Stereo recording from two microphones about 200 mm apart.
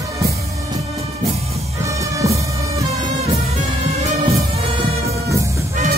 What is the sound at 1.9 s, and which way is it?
Music, 15° right (ahead or behind).